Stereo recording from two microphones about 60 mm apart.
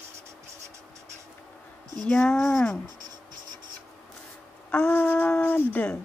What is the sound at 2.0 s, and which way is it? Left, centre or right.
Speech, centre.